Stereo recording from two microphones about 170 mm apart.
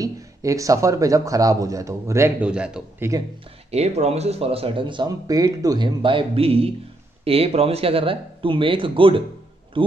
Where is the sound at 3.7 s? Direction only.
40° right (ahead or behind).